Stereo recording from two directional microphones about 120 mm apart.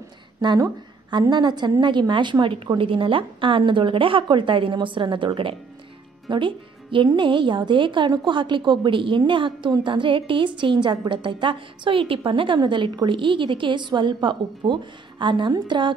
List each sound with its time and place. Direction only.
0.4 s a woman's voice: 35° right (ahead or behind)